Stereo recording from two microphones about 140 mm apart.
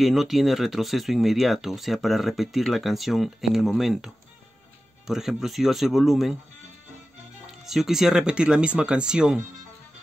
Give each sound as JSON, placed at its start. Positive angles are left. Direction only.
{"t": 0.0, "sound": "speech", "side_deg": 0}
{"t": 7.6, "sound": "speech", "side_deg": -5}